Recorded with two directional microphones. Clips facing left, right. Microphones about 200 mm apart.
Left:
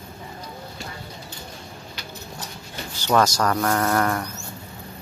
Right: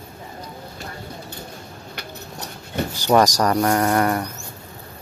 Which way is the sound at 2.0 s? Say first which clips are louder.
Right 3 dB; 60° right (ahead or behind).